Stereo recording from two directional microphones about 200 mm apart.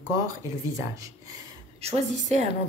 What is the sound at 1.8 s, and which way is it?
Speech, 35° right (ahead or behind).